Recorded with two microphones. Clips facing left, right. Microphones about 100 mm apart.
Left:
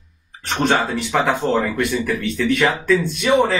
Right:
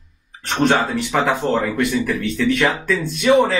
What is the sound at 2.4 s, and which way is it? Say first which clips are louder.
Speech: even; centre (ahead or behind).